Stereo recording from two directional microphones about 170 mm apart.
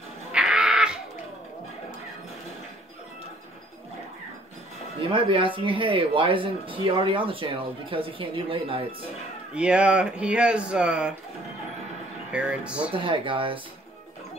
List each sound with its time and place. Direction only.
0.3 s crow: 5° right (ahead or behind)
5.1 s speech: 30° right (ahead or behind)
9.5 s speech: 5° right (ahead or behind)
12.3 s speech: 5° right (ahead or behind)
12.9 s speech: 30° right (ahead or behind)